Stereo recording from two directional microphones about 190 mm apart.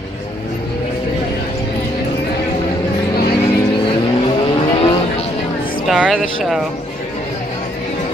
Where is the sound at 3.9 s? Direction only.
25° left (ahead or behind).